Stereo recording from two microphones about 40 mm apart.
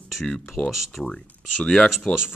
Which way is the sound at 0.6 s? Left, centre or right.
Left.